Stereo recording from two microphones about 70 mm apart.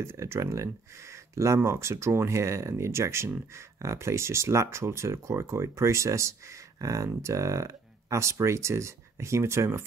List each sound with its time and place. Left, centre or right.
0.0 s speech: right